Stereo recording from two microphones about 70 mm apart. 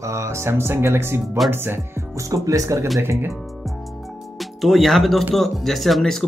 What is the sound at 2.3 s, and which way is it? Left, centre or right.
Speech, right.